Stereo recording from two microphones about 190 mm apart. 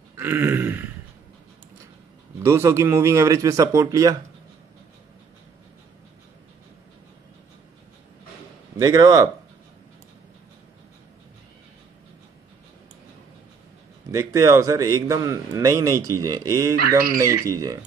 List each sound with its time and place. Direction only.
0.2 s throat clearing: 10° right (ahead or behind)
2.4 s a man's voice: 15° right (ahead or behind)
8.7 s speech: 20° right (ahead or behind)
14.1 s a man's voice: 15° right (ahead or behind)